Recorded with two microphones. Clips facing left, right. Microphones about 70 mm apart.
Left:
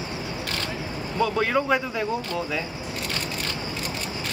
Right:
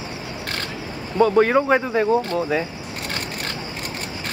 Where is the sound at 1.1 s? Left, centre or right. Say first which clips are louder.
Right 7 dB; right.